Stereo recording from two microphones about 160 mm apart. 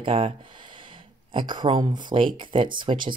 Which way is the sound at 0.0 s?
35° right (ahead or behind).